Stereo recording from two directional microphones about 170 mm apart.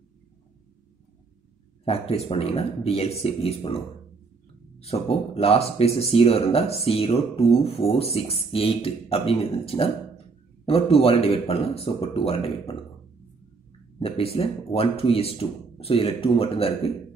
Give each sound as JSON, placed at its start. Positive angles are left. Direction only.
{"t": 1.9, "sound": "speech", "side_deg": 35}
{"t": 13.9, "sound": "speech", "side_deg": 35}